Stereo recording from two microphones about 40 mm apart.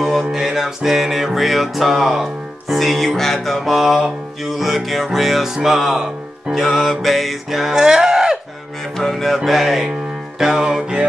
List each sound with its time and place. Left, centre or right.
0.0 s music: centre
7.7 s a sound: centre
8.9 s music: centre
10.4 s music: centre